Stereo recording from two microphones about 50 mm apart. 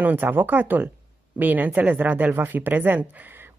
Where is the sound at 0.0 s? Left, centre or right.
Right.